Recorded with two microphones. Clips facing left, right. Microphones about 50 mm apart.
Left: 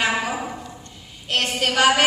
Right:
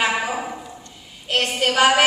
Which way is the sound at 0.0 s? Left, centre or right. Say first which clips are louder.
Right 1 dB; centre.